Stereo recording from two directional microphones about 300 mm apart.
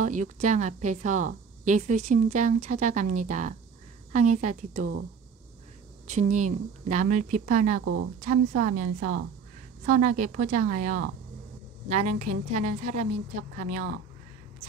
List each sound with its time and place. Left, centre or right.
0.0 s a woman's voice: right
6.0 s a woman's voice: right
7.8 s a woman's voice: right
8.2 s a woman's voice: right
9.8 s a woman's voice: right